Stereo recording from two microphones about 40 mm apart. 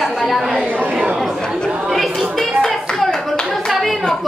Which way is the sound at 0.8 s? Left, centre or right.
Right.